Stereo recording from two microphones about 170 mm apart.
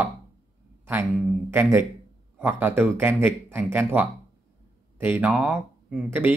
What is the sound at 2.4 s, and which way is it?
Speech, 10° right (ahead or behind).